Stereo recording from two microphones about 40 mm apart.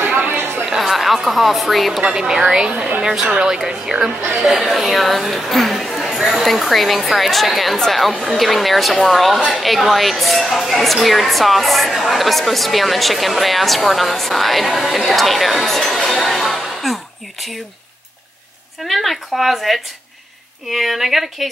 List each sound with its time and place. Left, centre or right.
0.3 s chatter: right
0.7 s a woman's voice: centre
2.1 s speech: centre
6.0 s a sound: centre
6.4 s speech: centre
18.9 s speech: centre